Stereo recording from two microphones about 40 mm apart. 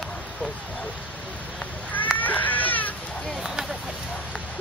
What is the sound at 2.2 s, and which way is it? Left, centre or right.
Cat, left.